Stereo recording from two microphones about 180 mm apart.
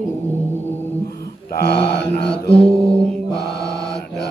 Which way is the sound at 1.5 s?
70° left (ahead or behind).